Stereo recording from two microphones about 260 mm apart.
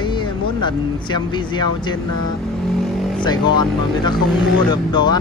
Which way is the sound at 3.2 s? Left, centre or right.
Centre.